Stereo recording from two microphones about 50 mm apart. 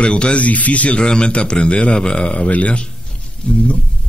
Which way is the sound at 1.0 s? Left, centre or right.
Centre.